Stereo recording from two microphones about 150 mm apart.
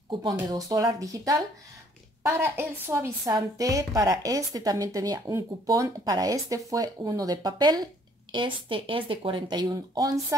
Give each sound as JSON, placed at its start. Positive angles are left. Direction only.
{"t": 0.1, "sound": "speech", "side_deg": -30}